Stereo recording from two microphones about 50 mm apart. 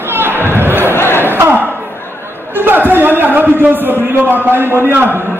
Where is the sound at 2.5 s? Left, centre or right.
Right.